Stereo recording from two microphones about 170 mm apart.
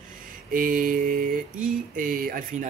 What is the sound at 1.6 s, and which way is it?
Speech, 55° right (ahead or behind).